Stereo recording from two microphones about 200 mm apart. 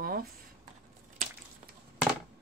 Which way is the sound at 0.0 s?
45° right (ahead or behind).